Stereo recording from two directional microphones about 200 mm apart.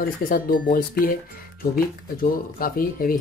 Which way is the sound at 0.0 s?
45° left (ahead or behind).